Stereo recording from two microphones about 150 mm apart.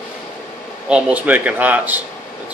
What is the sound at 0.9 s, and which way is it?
Speech, 10° right (ahead or behind).